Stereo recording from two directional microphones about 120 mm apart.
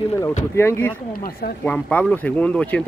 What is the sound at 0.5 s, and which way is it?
Speech, 20° left (ahead or behind).